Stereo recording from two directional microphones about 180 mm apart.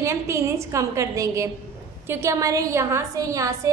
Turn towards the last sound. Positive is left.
turn(degrees=-20)  # may be behind; listen again after turning